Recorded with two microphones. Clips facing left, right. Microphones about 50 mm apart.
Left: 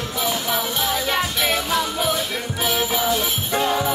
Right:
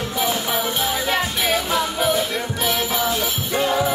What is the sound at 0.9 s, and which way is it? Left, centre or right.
Music, centre.